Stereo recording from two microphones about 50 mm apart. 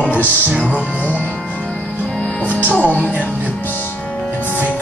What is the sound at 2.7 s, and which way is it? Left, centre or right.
Speech, left.